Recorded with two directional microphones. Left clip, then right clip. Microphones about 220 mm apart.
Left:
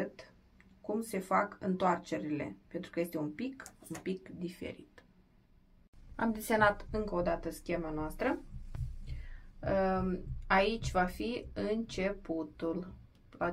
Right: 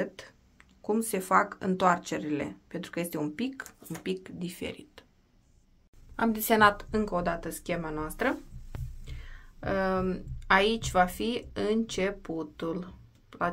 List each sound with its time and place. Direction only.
0.0 s speech: 35° right (ahead or behind)
6.1 s speech: 30° right (ahead or behind)
8.7 s throbbing: centre (ahead or behind)
9.6 s speech: 35° right (ahead or behind)